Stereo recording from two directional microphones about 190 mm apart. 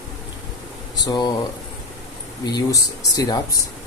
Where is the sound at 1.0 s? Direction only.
20° left (ahead or behind).